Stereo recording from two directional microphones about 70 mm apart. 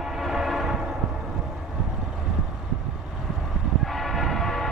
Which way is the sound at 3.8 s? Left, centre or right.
Centre.